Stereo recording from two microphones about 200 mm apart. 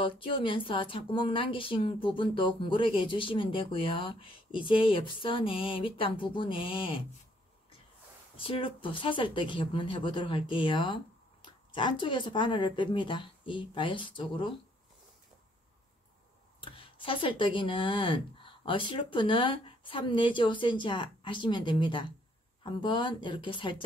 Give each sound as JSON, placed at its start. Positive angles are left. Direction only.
{"t": 0.0, "sound": "speech", "side_deg": 25}
{"t": 8.4, "sound": "speech", "side_deg": 25}
{"t": 16.6, "sound": "speech", "side_deg": 25}